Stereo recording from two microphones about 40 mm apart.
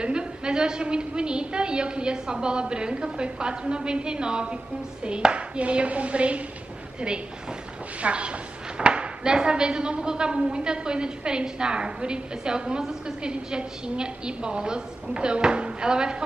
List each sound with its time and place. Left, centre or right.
0.0 s speech: right
8.0 s speech: right